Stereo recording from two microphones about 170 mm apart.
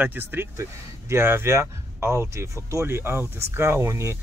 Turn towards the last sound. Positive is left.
turn(degrees=-15)  # may be behind; listen again after turning